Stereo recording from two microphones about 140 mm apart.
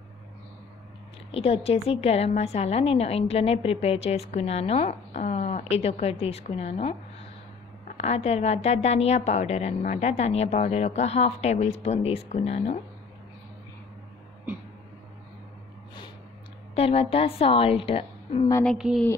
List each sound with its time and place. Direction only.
1.3 s a woman's voice: 45° left (ahead or behind)
8.0 s a woman's voice: 50° left (ahead or behind)
16.7 s a woman's voice: 45° left (ahead or behind)
18.8 s speech: 5° right (ahead or behind)